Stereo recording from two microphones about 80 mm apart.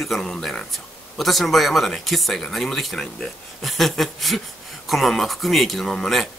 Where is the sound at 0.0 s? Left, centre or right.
Centre.